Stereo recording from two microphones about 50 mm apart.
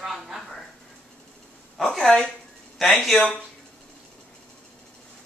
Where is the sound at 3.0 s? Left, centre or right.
Centre.